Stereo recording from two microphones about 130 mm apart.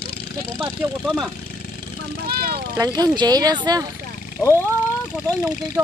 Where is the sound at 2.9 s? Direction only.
30° right (ahead or behind).